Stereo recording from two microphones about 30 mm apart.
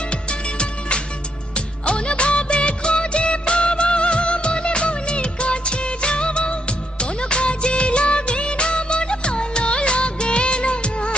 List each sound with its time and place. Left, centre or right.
0.1 s music: left
1.9 s music of bollywood: left